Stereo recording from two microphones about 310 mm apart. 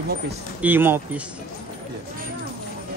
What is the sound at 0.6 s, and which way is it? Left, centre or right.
Speech, centre.